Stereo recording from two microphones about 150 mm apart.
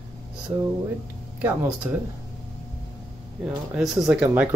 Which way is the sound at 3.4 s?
5° right (ahead or behind).